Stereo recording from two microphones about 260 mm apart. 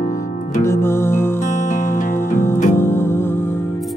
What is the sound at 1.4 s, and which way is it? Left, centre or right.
Music, left.